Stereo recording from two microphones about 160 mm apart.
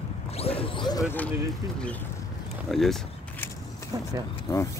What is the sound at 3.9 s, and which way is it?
Speech, 20° right (ahead or behind).